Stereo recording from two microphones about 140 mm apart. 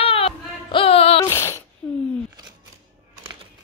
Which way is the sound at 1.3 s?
20° left (ahead or behind).